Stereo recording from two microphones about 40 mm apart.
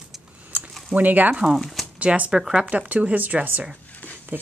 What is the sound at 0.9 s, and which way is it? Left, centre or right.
Speech, right.